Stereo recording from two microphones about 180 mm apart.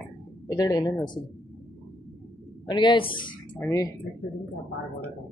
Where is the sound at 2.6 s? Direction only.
25° left (ahead or behind).